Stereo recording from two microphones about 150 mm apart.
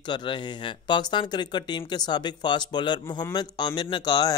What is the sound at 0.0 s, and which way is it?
Speech, 30° left (ahead or behind).